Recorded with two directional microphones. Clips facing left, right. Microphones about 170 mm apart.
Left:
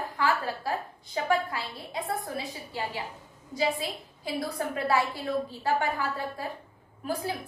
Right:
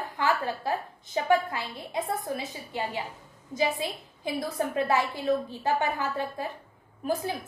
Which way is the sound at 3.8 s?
20° right (ahead or behind).